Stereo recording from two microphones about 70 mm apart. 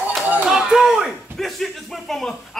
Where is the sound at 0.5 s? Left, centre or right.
Centre.